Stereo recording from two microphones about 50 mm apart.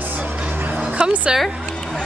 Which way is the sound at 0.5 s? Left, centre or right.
Right.